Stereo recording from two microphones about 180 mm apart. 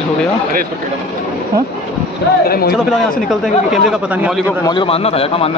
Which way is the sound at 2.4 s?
55° left (ahead or behind).